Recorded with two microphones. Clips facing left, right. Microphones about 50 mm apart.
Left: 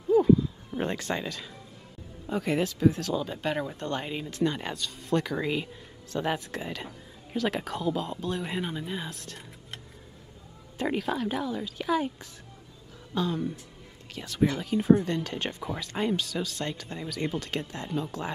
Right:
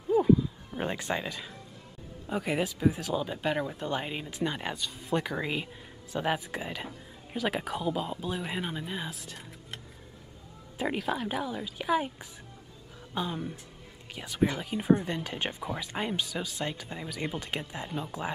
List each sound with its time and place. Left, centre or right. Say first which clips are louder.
0.1 s a sound: left 3 dB; centre
0.9 s speech: left 1 dB; centre
10.8 s speech: left 2 dB; centre